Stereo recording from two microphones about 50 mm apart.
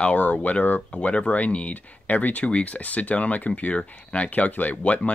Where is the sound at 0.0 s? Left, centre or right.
Left.